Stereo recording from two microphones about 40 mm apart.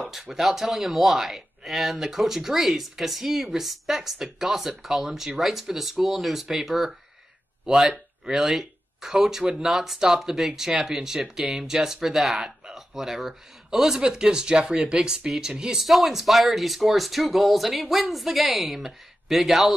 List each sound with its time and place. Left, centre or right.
0.1 s speech: centre
8.3 s speech: centre
9.7 s speech: centre
12.4 s a sound: centre
13.7 s speech: centre
15.8 s speech: centre